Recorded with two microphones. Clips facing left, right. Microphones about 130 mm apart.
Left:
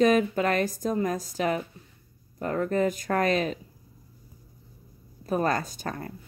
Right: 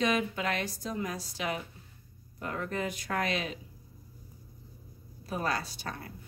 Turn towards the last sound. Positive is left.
turn(degrees=45)  # may be behind; listen again after turning